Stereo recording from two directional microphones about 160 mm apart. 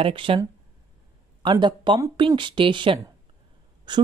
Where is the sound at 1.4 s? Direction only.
30° right (ahead or behind).